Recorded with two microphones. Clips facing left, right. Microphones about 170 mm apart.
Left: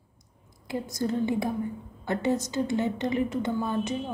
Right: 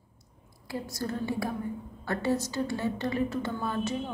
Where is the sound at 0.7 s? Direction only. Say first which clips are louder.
Left 5 dB; 20° left (ahead or behind).